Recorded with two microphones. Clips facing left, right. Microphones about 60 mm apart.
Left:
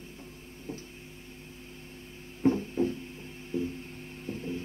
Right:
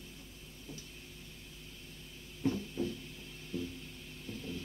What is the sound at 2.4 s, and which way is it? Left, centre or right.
Music, left.